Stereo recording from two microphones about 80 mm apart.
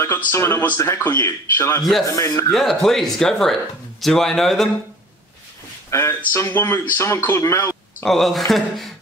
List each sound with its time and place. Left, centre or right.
0.0 s speech: left
2.1 s speech: left
2.5 s speech: centre
5.9 s speech: left
8.0 s speech: centre